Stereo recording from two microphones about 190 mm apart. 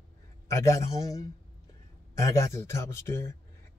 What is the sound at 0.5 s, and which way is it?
Speech, 15° left (ahead or behind).